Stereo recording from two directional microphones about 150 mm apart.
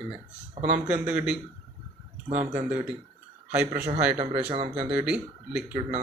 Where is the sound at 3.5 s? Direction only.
10° right (ahead or behind).